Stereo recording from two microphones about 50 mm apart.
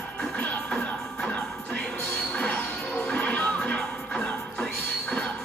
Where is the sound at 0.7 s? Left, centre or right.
Left.